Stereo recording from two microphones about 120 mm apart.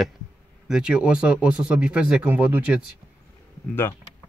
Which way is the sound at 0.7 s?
5° right (ahead or behind).